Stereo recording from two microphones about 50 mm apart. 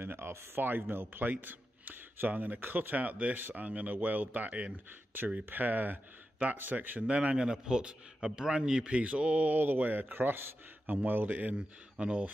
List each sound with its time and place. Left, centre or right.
0.0 s a man's voice: right
5.4 s speech: right
7.0 s a man's voice: right